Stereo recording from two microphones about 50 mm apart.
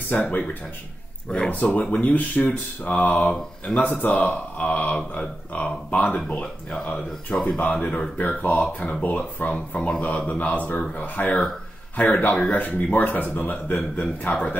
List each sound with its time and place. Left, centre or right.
0.1 s speech: left
1.5 s speech: left
9.8 s speech: left